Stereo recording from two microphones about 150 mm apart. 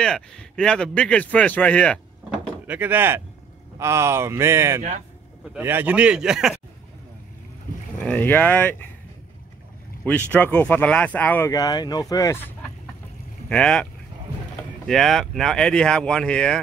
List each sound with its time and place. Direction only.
0.0 s a man's voice: 5° left (ahead or behind)
2.6 s speech: 15° right (ahead or behind)
8.0 s a man's voice: 10° left (ahead or behind)
10.0 s a man's voice: 10° left (ahead or behind)
11.5 s speech: 25° left (ahead or behind)
13.5 s speech: 5° left (ahead or behind)
14.9 s speech: centre (ahead or behind)